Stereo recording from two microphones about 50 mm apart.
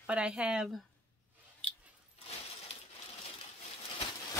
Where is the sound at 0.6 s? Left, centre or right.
Centre.